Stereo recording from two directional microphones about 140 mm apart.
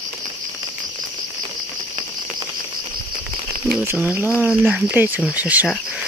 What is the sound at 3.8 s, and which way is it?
Speech, 10° right (ahead or behind).